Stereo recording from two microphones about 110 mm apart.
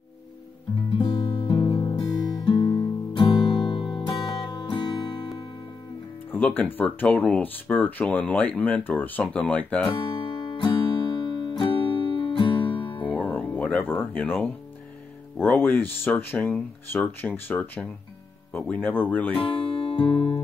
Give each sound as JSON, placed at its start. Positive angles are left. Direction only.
{"t": 0.9, "sound": "music", "side_deg": 50}
{"t": 6.3, "sound": "music", "side_deg": 15}
{"t": 6.6, "sound": "speech", "side_deg": 15}
{"t": 9.8, "sound": "music", "side_deg": 50}
{"t": 13.0, "sound": "music", "side_deg": 15}
{"t": 15.3, "sound": "speech", "side_deg": 20}
{"t": 19.3, "sound": "music", "side_deg": 50}